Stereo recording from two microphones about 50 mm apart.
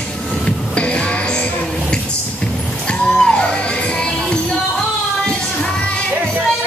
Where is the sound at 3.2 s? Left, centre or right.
Centre.